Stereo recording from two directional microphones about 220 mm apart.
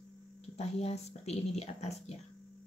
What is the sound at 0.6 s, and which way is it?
Speech, 30° left (ahead or behind).